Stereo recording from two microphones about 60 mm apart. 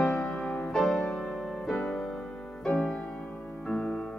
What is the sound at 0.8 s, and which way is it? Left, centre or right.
Music, centre.